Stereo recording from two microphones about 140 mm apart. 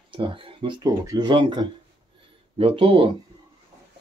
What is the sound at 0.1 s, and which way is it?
Speech, 40° right (ahead or behind).